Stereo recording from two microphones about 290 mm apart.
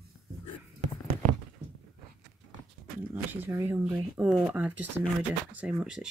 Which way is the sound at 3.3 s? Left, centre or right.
Centre.